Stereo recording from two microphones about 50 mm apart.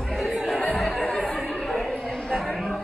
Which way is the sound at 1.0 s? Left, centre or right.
Centre.